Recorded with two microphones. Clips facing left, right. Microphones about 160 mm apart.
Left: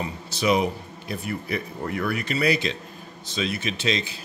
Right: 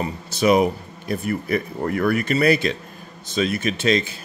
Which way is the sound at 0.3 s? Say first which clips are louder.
Right 5 dB; 50° right (ahead or behind).